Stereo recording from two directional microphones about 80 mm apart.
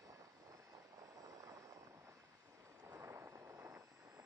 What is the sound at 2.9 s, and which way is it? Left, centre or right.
Vehicle, right.